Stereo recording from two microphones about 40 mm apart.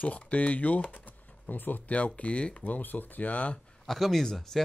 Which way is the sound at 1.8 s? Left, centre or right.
Left.